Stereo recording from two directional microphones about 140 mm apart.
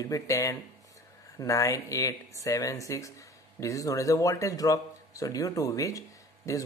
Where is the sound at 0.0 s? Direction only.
25° left (ahead or behind).